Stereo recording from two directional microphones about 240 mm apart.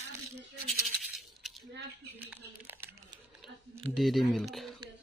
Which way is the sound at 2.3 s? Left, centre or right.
Centre.